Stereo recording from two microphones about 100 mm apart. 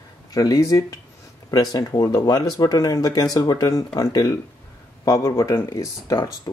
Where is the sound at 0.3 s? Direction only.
35° left (ahead or behind).